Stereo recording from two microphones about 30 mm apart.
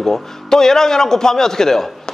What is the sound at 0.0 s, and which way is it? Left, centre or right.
A man's voice, centre.